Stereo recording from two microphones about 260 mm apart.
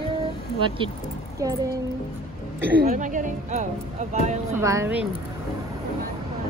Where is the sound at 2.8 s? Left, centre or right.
Right.